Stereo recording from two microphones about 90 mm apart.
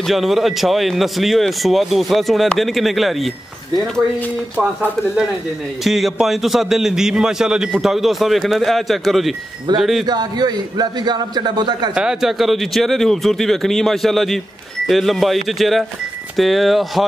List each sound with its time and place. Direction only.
0.0 s speech: centre (ahead or behind)
5.9 s speech: centre (ahead or behind)
10.0 s a man's voice: 50° right (ahead or behind)
11.9 s speech: 10° right (ahead or behind)